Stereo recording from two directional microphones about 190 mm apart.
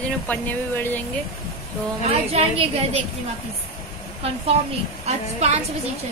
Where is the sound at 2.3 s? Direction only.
35° right (ahead or behind).